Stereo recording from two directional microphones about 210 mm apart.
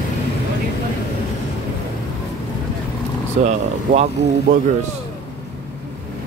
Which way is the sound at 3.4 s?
35° right (ahead or behind).